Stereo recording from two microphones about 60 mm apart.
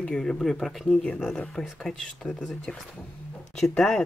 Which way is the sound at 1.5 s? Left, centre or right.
Centre.